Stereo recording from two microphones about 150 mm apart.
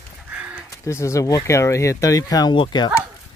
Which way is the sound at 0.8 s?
20° left (ahead or behind).